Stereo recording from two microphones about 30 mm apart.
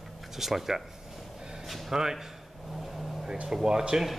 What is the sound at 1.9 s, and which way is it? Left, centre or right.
Speech, centre.